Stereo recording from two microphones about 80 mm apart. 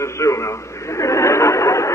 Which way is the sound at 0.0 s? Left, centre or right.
Left.